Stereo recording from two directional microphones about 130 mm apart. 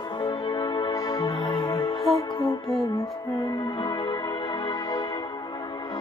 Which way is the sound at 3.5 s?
40° left (ahead or behind).